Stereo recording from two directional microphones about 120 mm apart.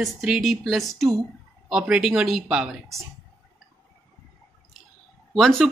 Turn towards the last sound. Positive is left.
turn(degrees=5)  # may be behind; listen again after turning